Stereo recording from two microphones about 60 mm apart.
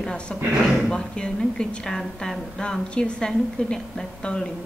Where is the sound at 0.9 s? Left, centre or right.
Centre.